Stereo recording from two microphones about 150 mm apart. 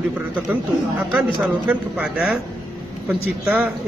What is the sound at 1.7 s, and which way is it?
Speech, 5° right (ahead or behind).